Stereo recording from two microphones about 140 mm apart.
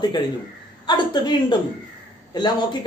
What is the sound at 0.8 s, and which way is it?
A man's voice, 30° left (ahead or behind).